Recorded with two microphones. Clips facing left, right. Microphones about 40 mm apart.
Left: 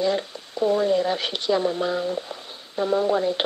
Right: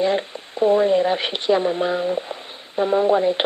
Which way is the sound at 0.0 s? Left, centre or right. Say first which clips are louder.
Right 3 dB; right.